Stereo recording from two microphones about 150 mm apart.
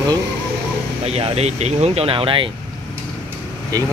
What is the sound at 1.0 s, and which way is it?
Speech, 45° right (ahead or behind).